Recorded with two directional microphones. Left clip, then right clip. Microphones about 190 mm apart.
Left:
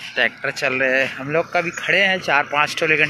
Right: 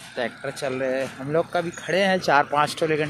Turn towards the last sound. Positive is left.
turn(degrees=-20)  # may be behind; listen again after turning